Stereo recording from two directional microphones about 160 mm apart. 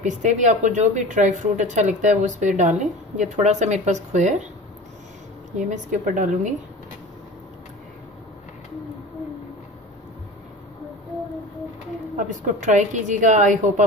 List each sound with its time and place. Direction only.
0.0 s speech: 50° right (ahead or behind)
5.6 s speech: 50° right (ahead or behind)
12.2 s speech: 50° right (ahead or behind)